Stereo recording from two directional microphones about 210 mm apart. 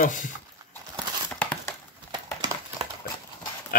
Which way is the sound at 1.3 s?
5° left (ahead or behind).